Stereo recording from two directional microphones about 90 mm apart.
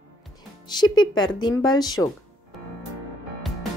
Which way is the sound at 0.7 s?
50° left (ahead or behind).